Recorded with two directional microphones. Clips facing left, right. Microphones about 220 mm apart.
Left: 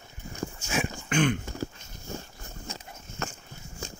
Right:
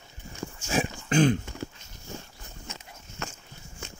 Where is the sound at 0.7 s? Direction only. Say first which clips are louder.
Right 4 dB; 35° right (ahead or behind).